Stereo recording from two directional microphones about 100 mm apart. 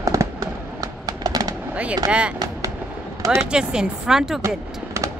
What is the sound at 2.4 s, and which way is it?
Fireworks, 35° right (ahead or behind).